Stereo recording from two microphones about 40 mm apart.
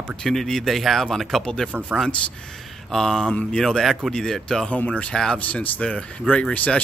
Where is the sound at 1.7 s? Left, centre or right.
Right.